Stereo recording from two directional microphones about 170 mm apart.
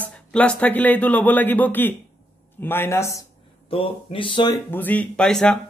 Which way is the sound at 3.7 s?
30° left (ahead or behind).